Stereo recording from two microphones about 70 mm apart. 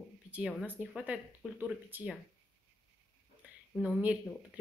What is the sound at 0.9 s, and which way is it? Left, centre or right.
Speech, centre.